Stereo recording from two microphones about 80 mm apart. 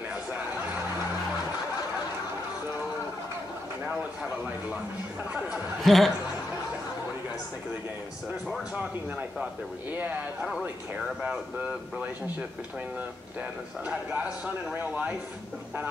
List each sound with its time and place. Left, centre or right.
5.5 s speech: centre
11.2 s speech: centre
13.8 s speech: centre